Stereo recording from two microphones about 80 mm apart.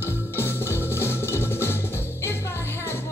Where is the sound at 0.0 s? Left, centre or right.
Left.